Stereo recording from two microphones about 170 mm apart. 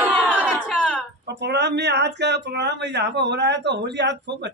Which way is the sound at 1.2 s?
80° right.